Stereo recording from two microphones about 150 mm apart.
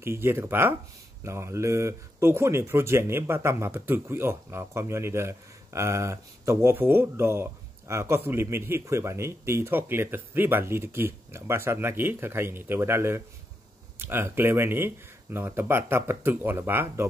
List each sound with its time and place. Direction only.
0.0 s speech: 15° right (ahead or behind)